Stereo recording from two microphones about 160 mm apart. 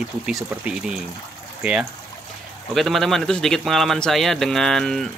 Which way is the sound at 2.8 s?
Centre (ahead or behind).